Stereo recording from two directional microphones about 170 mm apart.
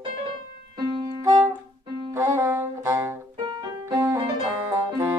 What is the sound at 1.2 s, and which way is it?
Music, 20° right (ahead or behind).